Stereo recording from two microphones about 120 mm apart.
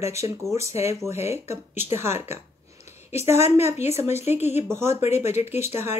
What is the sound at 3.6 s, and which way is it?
Speech, 65° left (ahead or behind).